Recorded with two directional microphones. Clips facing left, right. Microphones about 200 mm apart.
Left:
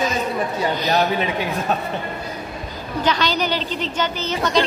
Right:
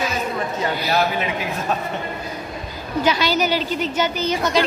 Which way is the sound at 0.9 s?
35° left (ahead or behind).